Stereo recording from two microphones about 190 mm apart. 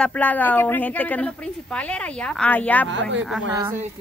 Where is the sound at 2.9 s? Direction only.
75° right (ahead or behind).